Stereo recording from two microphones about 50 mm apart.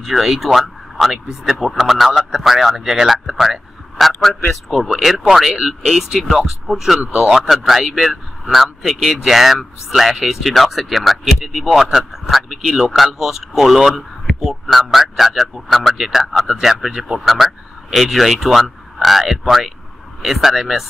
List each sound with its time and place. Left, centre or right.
0.0 s speech: centre
5.5 s speech: centre
5.8 s speech: centre
7.1 s speech: centre
7.3 s speech: centre